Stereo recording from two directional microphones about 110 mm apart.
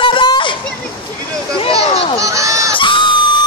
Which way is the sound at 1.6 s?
60° left (ahead or behind).